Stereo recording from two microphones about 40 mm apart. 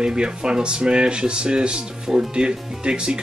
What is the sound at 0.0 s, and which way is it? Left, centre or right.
Speech, right.